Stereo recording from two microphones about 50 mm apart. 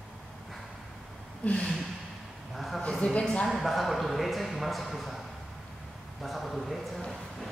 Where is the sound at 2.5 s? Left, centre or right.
Centre.